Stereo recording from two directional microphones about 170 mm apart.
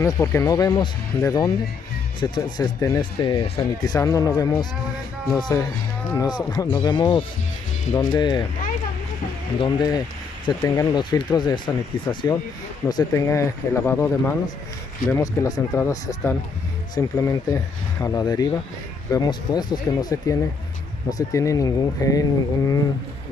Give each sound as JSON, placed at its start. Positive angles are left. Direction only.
{"t": 0.0, "sound": "speech", "side_deg": 15}
{"t": 9.6, "sound": "speech", "side_deg": 25}